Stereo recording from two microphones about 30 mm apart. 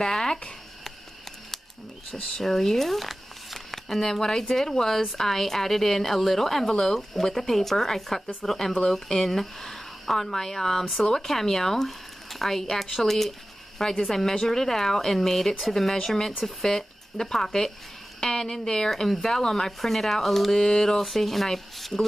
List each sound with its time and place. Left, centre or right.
0.0 s speech: left
2.4 s a woman's voice: centre
2.9 s a sound: centre
4.0 s a woman's voice: centre